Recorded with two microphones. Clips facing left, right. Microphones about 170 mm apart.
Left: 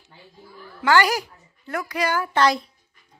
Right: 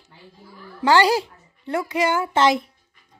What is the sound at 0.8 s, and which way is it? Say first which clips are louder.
A child's voice: right 2 dB; 30° right (ahead or behind).